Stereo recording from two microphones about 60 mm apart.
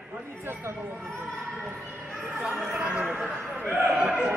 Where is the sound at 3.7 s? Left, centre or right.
Right.